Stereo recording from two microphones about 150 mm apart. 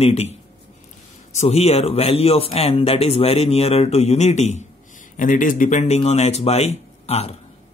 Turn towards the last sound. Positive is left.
turn(degrees=45)  # may be behind; listen again after turning